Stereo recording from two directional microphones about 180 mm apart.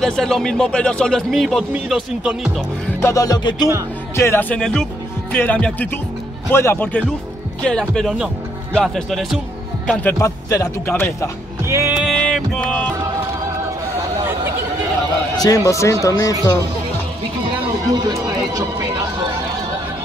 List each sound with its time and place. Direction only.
0.0 s a man's voice: centre (ahead or behind)
3.0 s a man's voice: 15° left (ahead or behind); by 9.4 s centre (ahead or behind)
9.8 s speech: 10° left (ahead or behind)
11.6 s music: 15° right (ahead or behind)
12.0 s a man's voice: centre (ahead or behind)
15.3 s speech: 20° left (ahead or behind)
17.9 s speech: 20° right (ahead or behind)